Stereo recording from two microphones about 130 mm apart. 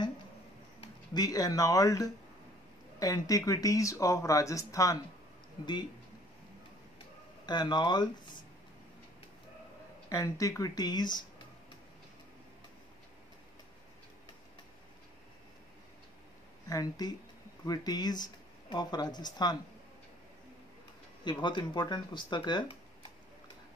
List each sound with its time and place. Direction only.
1.1 s speech: 30° left (ahead or behind)
7.4 s speech: 35° left (ahead or behind)
10.0 s speech: 25° left (ahead or behind)
16.6 s speech: 30° left (ahead or behind)
21.2 s speech: 35° left (ahead or behind)